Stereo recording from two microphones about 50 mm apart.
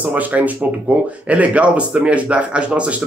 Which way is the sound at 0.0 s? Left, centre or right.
Right.